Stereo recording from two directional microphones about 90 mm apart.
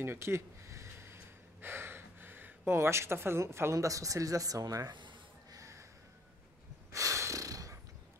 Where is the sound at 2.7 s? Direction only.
30° right (ahead or behind).